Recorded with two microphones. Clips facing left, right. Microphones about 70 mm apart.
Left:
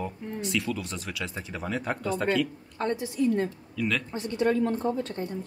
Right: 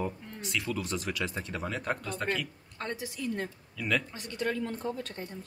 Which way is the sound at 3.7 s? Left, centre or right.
Centre.